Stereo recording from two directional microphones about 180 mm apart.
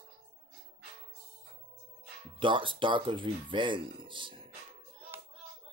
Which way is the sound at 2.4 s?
25° right (ahead or behind).